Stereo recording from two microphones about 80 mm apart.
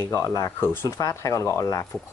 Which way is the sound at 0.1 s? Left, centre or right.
Left.